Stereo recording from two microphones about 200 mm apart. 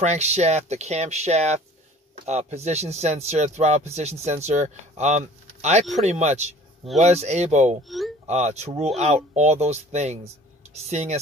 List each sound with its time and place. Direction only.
0.0 s speech: 35° right (ahead or behind)